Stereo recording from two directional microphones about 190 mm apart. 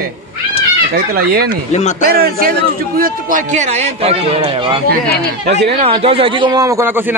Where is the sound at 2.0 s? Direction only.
55° right (ahead or behind); by 4.8 s 30° right (ahead or behind).